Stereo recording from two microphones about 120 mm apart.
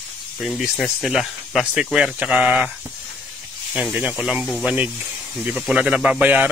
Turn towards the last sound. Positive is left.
turn(degrees=-15)  # may be behind; listen again after turning